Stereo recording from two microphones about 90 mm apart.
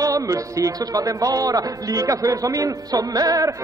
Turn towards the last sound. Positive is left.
turn(degrees=-40)  # may be behind; listen again after turning